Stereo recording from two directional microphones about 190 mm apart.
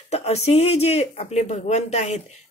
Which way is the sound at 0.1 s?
35° left (ahead or behind).